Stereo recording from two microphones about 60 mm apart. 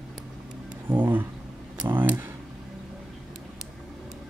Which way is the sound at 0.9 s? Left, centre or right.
Right.